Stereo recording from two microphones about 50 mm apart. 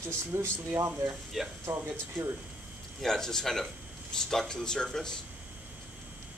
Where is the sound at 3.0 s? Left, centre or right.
Centre.